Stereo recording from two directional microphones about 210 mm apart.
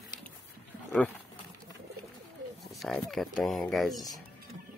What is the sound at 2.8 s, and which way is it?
Speech, centre (ahead or behind).